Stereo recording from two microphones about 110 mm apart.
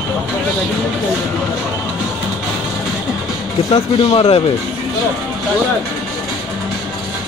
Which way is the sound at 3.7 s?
45° left (ahead or behind).